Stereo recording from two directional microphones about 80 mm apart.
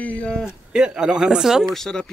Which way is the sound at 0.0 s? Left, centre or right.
Centre.